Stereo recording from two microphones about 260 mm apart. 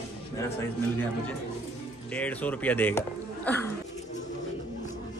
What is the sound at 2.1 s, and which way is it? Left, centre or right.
Speech, centre.